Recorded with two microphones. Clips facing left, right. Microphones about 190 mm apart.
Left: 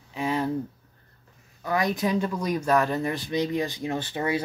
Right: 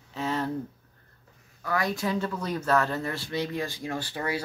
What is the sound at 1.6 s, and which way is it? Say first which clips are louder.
Speech: left 3 dB; 20° left (ahead or behind).